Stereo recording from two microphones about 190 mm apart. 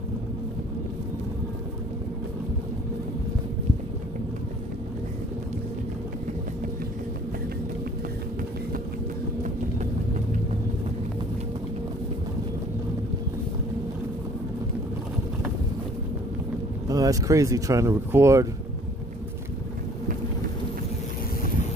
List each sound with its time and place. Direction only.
16.8 s speech: 20° right (ahead or behind)